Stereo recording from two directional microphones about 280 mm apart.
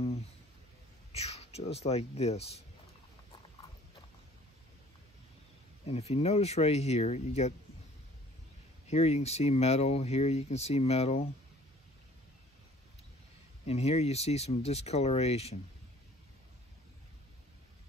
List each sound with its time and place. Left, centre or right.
1.1 s speech: left
5.9 s speech: left
8.8 s speech: left
13.7 s speech: left